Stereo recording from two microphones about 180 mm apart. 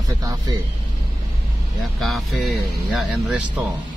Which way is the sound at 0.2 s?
20° right (ahead or behind).